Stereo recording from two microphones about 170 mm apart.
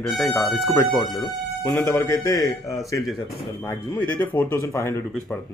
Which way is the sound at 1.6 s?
20° left (ahead or behind).